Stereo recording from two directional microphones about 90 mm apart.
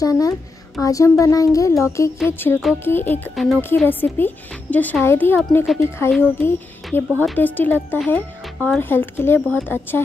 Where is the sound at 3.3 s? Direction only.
Centre (ahead or behind).